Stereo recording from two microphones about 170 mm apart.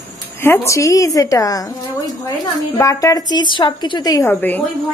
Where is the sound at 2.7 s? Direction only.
20° left (ahead or behind).